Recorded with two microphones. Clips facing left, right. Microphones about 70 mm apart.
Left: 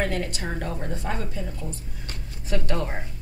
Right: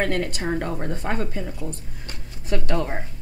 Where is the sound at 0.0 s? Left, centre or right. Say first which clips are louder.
Right 3 dB; right.